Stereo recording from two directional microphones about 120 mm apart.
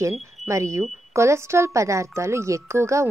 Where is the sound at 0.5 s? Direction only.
25° right (ahead or behind).